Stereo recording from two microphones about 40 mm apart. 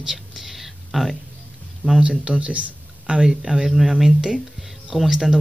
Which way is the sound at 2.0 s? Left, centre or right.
Right.